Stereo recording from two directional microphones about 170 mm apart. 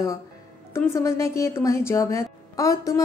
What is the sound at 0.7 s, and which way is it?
A woman's voice, 15° left (ahead or behind).